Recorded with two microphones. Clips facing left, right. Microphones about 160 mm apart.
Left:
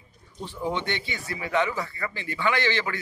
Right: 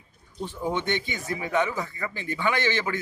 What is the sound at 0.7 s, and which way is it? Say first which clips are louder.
A man's voice: right 1 dB; 15° right (ahead or behind).